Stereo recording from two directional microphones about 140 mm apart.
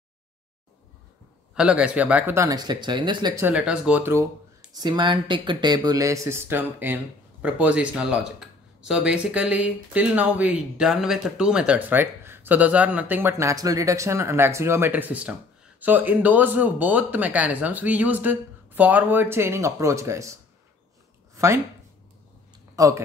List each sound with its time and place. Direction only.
1.5 s speech: 5° right (ahead or behind); by 3.4 s 30° right (ahead or behind)
3.4 s speech: 10° right (ahead or behind)
4.7 s speech: 30° right (ahead or behind)
22.8 s speech: 20° right (ahead or behind)